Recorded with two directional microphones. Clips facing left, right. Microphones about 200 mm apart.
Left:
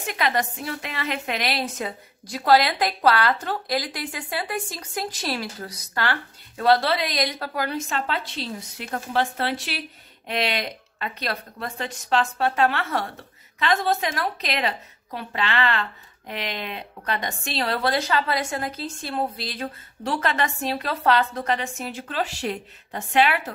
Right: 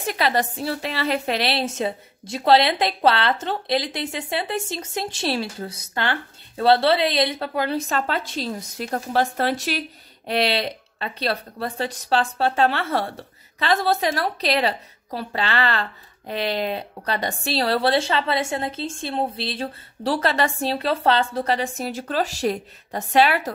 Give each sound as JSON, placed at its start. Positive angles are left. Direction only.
{"t": 0.0, "sound": "a woman's voice", "side_deg": -35}